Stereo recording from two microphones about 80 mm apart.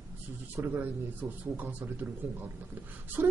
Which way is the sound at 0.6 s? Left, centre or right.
Right.